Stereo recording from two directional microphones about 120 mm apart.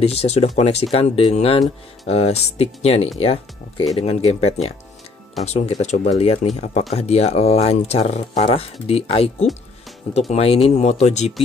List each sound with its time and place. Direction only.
0.0 s speech: 55° left (ahead or behind)